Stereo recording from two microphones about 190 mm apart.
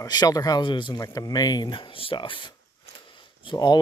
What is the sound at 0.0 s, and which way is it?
Speech, 20° left (ahead or behind).